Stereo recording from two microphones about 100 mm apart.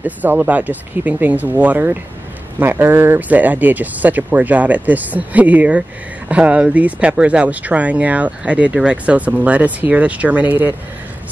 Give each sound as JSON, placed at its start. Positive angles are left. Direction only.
{"t": 0.0, "sound": "speech", "side_deg": -15}